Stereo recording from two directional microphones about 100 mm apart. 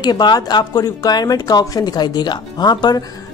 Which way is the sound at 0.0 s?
45° left (ahead or behind).